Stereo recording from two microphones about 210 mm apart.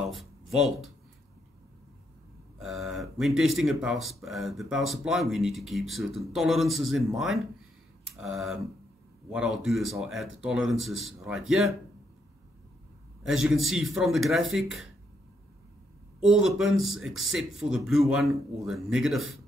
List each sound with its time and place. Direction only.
0.0 s a sound: centre (ahead or behind)
2.6 s speech: centre (ahead or behind)
13.3 s speech: centre (ahead or behind)
16.3 s speech: centre (ahead or behind)